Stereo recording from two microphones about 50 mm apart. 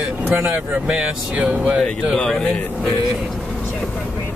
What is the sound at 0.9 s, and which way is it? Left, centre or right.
Speech, centre.